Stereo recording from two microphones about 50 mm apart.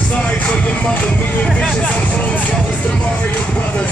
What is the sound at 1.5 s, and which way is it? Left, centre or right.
Vehicle, centre.